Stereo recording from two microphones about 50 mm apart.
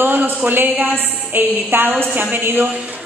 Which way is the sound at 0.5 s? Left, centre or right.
Right.